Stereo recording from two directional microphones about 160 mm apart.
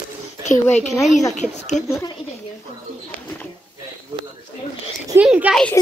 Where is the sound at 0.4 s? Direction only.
45° left (ahead or behind).